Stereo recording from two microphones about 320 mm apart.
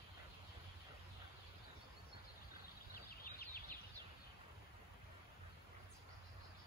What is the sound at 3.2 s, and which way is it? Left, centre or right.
Chicken, left.